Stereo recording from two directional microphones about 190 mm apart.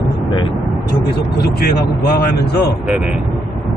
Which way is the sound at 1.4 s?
55° left (ahead or behind).